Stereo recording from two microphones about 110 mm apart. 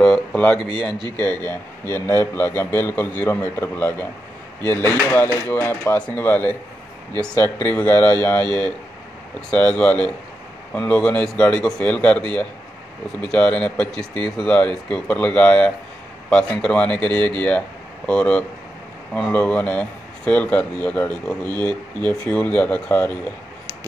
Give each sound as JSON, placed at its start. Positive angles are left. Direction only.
{"t": 0.0, "sound": "a sound", "side_deg": 10}
{"t": 1.1, "sound": "a man's voice", "side_deg": 20}
{"t": 9.5, "sound": "speech", "side_deg": 10}